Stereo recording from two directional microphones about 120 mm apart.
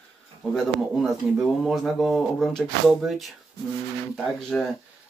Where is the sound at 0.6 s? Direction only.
Centre (ahead or behind).